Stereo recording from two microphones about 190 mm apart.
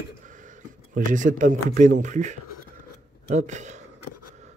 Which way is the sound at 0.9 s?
45° right (ahead or behind).